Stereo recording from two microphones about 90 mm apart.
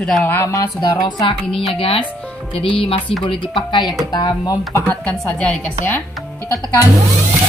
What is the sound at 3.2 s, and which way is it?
Speech, 65° left (ahead or behind).